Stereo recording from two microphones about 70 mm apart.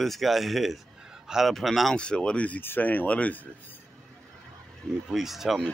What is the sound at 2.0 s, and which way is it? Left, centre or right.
Speech, centre.